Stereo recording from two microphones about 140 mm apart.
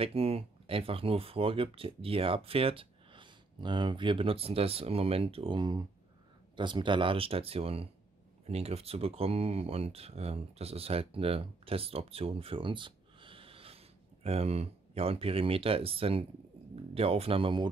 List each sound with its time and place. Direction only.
0.0 s speech: 45° right (ahead or behind)